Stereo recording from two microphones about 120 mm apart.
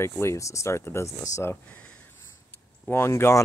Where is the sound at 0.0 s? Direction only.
20° left (ahead or behind).